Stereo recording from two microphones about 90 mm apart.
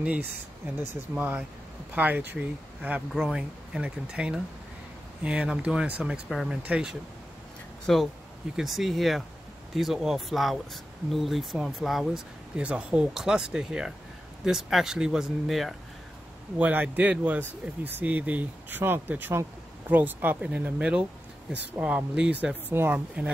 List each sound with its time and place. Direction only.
0.0 s speech: 15° right (ahead or behind)
2.0 s speech: 20° right (ahead or behind)
3.2 s speech: 5° right (ahead or behind)
6.2 s speech: centre (ahead or behind)
6.5 s speech: 10° right (ahead or behind)
7.8 s speech: centre (ahead or behind)
16.5 s speech: 15° right (ahead or behind)